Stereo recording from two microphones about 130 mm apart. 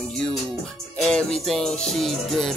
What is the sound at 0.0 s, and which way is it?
Music, centre (ahead or behind).